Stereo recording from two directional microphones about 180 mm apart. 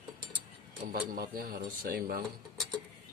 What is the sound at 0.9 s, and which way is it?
Speech, 55° right (ahead or behind).